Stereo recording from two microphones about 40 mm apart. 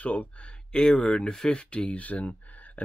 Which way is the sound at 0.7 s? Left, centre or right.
Left.